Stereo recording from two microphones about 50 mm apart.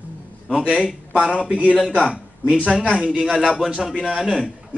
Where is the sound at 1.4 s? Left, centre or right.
Right.